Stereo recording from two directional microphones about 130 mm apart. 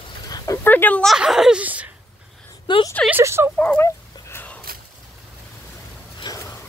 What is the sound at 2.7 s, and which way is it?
Speech, 40° left (ahead or behind).